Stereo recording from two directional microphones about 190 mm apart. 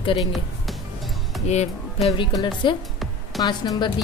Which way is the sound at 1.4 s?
35° left (ahead or behind).